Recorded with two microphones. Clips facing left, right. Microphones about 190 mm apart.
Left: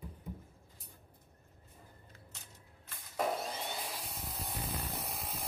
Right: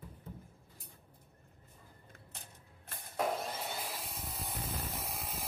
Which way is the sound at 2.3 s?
55° right (ahead or behind).